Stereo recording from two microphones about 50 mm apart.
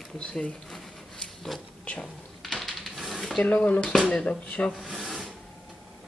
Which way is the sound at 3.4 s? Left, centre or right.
Left.